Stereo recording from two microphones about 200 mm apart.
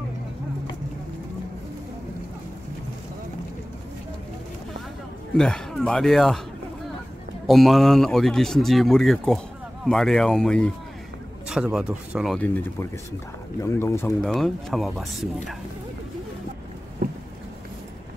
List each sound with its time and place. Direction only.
5.4 s speech: centre (ahead or behind)
7.4 s speech: centre (ahead or behind)
13.6 s speech: 15° left (ahead or behind)
14.2 s speech: centre (ahead or behind)
17.0 s a sound: 45° right (ahead or behind)